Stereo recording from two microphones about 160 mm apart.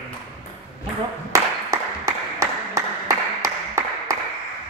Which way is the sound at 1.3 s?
20° right (ahead or behind).